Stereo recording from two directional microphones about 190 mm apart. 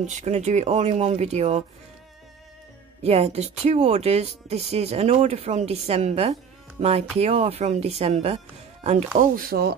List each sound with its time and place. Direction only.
0.0 s speech: 40° right (ahead or behind)
3.0 s speech: 35° right (ahead or behind); by 9.8 s 55° right (ahead or behind)